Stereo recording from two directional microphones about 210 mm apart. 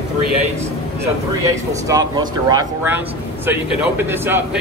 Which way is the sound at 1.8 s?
20° right (ahead or behind).